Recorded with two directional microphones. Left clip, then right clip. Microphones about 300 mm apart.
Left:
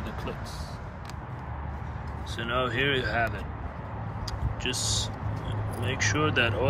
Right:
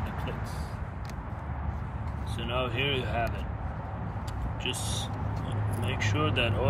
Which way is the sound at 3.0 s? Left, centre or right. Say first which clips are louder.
Left 4 dB; centre.